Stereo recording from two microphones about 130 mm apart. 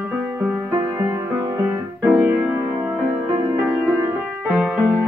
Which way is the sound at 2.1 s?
15° right (ahead or behind).